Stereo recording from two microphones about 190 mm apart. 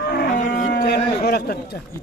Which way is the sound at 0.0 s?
55° left (ahead or behind).